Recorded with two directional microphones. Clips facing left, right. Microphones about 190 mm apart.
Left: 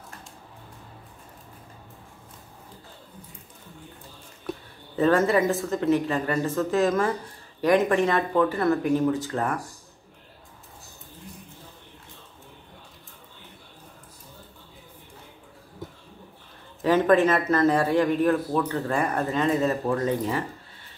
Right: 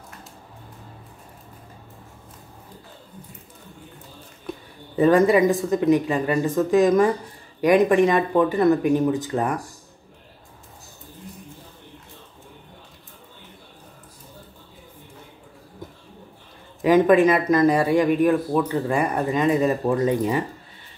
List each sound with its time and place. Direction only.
4.9 s speech: 15° right (ahead or behind)
16.8 s speech: 15° right (ahead or behind)